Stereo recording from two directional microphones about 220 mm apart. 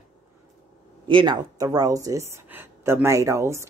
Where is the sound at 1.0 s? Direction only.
20° right (ahead or behind).